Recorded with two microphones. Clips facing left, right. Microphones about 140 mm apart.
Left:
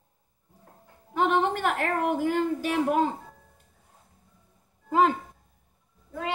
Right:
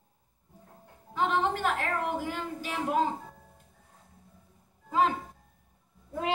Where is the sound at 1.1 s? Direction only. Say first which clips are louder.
Left 4 dB; 55° left (ahead or behind).